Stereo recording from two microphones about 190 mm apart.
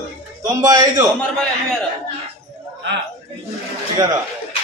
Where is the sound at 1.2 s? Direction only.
5° left (ahead or behind).